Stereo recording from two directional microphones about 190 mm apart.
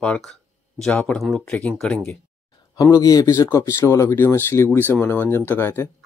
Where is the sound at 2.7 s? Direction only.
20° left (ahead or behind).